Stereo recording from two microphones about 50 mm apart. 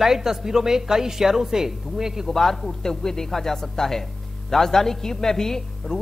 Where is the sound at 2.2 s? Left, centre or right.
Centre.